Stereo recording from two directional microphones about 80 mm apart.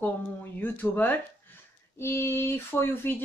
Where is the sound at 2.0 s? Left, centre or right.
Left.